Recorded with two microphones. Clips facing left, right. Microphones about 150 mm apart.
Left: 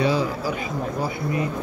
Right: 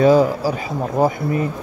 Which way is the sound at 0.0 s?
45° right (ahead or behind).